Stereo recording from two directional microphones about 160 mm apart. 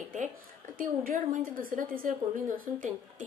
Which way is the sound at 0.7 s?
65° right (ahead or behind).